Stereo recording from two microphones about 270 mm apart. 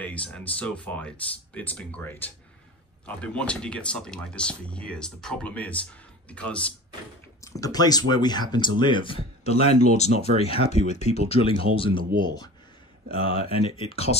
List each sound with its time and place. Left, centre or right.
0.0 s speech: centre
13.8 s speech: left